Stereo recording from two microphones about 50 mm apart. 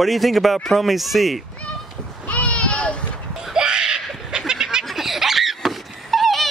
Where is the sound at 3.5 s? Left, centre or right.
Centre.